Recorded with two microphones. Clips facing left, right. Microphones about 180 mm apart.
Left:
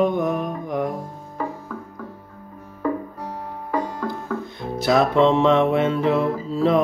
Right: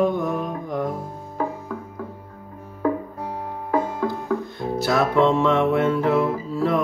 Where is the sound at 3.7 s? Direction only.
15° right (ahead or behind).